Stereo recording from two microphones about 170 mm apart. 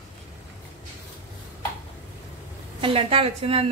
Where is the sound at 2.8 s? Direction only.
35° right (ahead or behind).